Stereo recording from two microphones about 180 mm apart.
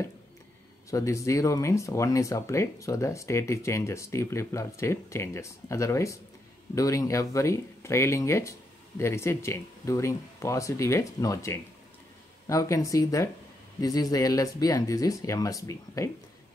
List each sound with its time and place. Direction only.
0.8 s speech: 15° left (ahead or behind)